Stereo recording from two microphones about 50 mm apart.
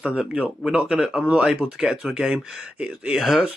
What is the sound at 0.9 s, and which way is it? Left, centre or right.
Speech, centre.